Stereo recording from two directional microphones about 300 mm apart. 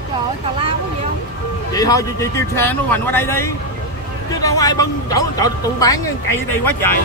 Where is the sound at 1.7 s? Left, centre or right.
Centre.